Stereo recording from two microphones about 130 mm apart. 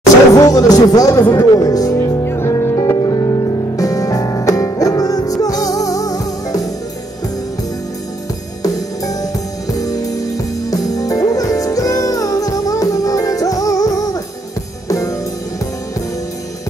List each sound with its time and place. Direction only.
0.3 s music: 30° left (ahead or behind)
8.6 s music: 30° left (ahead or behind)